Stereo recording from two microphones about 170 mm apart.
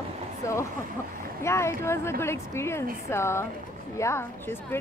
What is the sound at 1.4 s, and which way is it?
Speech, 15° left (ahead or behind).